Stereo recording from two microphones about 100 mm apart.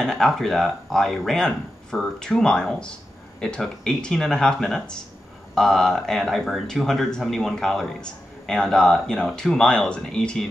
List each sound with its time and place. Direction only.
0.0 s speech: 5° left (ahead or behind)